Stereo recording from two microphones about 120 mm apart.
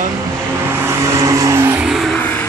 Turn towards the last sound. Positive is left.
turn(degrees=-25)  # may be behind; listen again after turning